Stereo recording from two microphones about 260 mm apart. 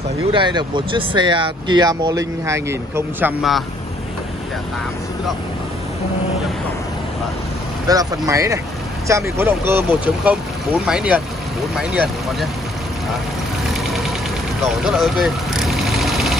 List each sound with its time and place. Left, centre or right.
0.3 s speech: centre
7.9 s speech: centre
13.8 s engine: centre
14.6 s vehicle: centre